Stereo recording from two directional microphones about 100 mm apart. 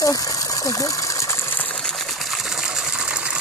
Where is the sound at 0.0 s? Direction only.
35° left (ahead or behind); by 1.8 s 20° left (ahead or behind).